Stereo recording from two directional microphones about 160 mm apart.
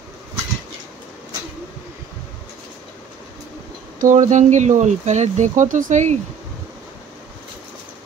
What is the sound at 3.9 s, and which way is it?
Speech, 55° right (ahead or behind).